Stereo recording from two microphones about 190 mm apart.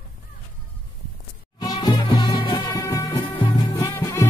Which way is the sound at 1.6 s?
20° left (ahead or behind).